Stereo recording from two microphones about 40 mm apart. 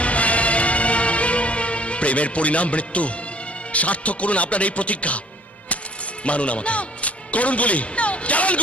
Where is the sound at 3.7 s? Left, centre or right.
Left.